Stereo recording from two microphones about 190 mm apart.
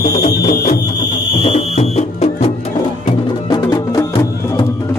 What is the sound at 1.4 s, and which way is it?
Music, 35° left (ahead or behind).